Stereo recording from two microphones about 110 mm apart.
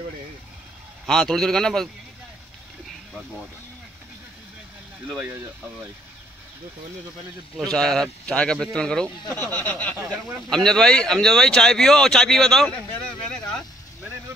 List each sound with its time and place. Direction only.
1.0 s speech: 5° left (ahead or behind)
5.0 s speech: 15° right (ahead or behind)
7.7 s speech: 5° left (ahead or behind)
9.4 s speech: 15° left (ahead or behind)